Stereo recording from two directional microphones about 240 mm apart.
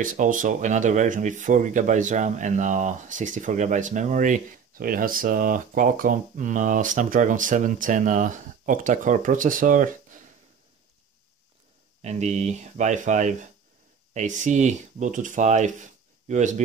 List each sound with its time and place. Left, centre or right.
0.0 s speech: right
12.0 s speech: right